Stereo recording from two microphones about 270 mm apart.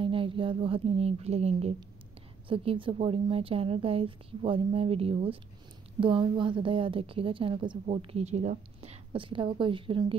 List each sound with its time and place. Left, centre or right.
0.0 s a woman's voice: centre